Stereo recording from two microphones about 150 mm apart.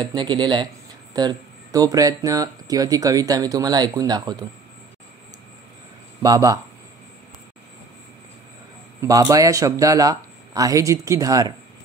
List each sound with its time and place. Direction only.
0.0 s speech: 30° right (ahead or behind)
6.2 s speech: 25° right (ahead or behind)
9.0 s speech: 25° right (ahead or behind)